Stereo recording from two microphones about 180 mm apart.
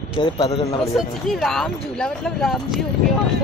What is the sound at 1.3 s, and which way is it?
Speech, centre (ahead or behind).